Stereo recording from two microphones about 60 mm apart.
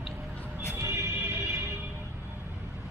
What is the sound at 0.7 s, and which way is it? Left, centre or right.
Music, right.